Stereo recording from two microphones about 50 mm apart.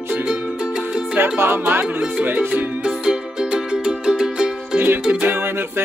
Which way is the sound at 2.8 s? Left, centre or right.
Centre.